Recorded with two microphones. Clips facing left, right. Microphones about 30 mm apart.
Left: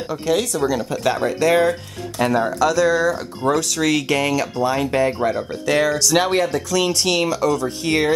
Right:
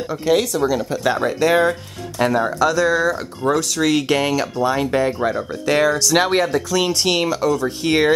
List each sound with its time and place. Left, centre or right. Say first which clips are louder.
0.1 s speech: right 3 dB; centre
4.1 s speech: right 1 dB; centre
4.6 s speech: even; centre